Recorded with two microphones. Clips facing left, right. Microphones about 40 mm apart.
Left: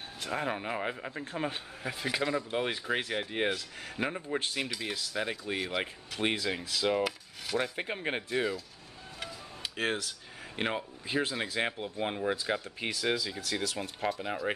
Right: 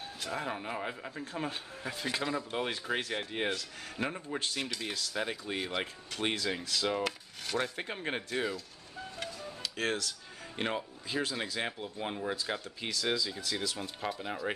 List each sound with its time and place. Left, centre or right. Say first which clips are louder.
0.2 s speech: left 3 dB; left
1.8 s speech: left 3 dB; centre
9.6 s a sound: left 1 dB; centre
11.1 s speech: left 3 dB; left
14.2 s speech: left 2 dB; centre